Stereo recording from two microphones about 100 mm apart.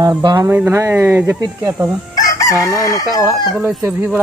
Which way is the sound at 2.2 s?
35° left (ahead or behind).